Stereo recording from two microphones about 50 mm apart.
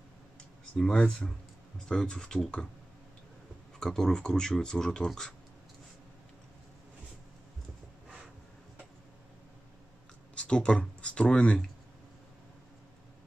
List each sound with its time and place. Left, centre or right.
0.7 s speech: centre
3.8 s speech: centre
10.3 s speech: left